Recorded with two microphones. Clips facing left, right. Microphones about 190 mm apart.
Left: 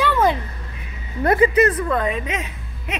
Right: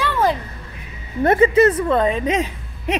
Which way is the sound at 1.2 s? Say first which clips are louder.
Right 2 dB; 25° right (ahead or behind).